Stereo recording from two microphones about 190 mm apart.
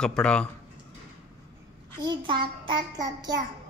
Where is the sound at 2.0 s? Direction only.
20° right (ahead or behind).